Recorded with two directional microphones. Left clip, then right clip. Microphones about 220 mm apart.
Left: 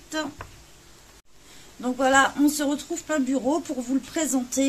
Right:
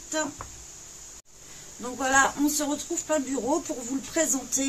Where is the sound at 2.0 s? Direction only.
30° left (ahead or behind).